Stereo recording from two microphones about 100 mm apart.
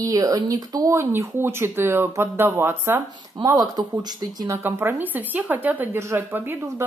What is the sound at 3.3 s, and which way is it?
Speech, 40° right (ahead or behind).